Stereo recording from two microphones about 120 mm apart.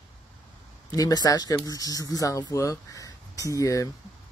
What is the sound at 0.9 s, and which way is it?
Speech, 30° left (ahead or behind).